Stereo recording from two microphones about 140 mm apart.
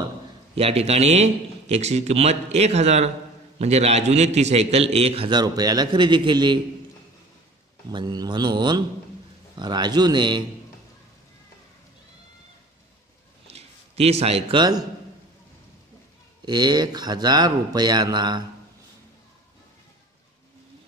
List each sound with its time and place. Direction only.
0.6 s a man's voice: 45° right (ahead or behind)
5.3 s a man's voice: 30° right (ahead or behind)
7.9 s a man's voice: 30° right (ahead or behind)
13.5 s a sound: 45° right (ahead or behind)
14.6 s a man's voice: 30° right (ahead or behind)
16.4 s a man's voice: 30° right (ahead or behind)